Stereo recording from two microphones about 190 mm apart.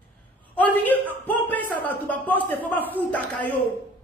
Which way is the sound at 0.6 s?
10° left (ahead or behind).